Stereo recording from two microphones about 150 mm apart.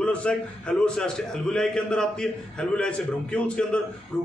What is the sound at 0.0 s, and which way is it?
A man's voice, 10° left (ahead or behind).